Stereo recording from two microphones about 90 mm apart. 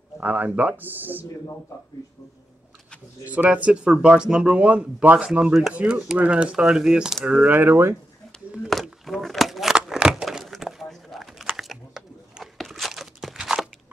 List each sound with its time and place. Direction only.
0.2 s speech: 20° right (ahead or behind)
3.3 s speech: 15° right (ahead or behind)
7.3 s speech: 20° right (ahead or behind)
8.6 s a sound: centre (ahead or behind)
11.5 s tearing: centre (ahead or behind)